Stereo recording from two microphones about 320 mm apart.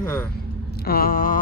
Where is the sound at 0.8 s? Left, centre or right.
Left.